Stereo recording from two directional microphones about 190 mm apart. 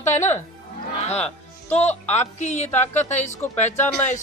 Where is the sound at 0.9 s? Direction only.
35° left (ahead or behind).